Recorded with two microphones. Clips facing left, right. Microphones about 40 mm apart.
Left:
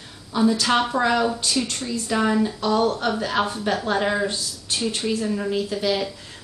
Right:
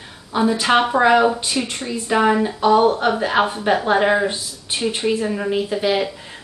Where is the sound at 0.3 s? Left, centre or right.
Right.